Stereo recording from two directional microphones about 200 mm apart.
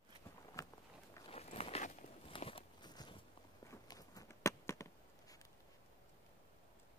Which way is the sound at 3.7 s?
15° left (ahead or behind).